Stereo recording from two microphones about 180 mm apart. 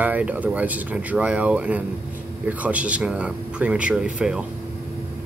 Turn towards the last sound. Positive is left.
turn(degrees=-5)  # may be behind; listen again after turning